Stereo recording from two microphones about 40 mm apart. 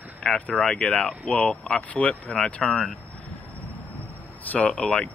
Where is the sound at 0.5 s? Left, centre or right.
Centre.